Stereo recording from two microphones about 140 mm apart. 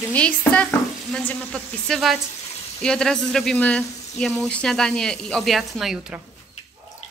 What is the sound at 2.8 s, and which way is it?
Speech, 5° left (ahead or behind).